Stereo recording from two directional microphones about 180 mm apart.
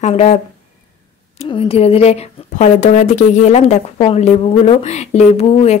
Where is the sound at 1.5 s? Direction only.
35° left (ahead or behind).